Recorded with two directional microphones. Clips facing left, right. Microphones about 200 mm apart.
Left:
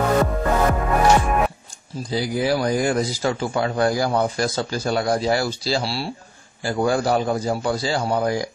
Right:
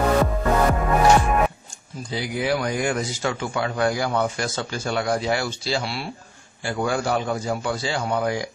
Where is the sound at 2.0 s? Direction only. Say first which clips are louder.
Left 3 dB; 35° left (ahead or behind).